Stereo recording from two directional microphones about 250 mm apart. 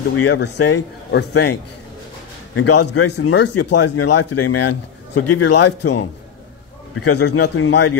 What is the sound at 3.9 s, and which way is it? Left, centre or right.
Speech, left.